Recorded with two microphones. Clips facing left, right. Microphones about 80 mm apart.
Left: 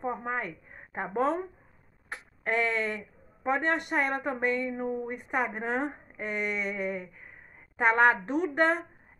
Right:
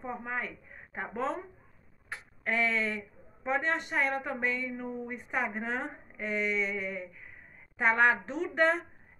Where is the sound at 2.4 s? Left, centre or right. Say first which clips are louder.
Left 2 dB; left.